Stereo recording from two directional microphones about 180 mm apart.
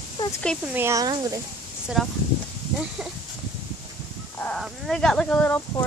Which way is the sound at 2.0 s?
Centre (ahead or behind).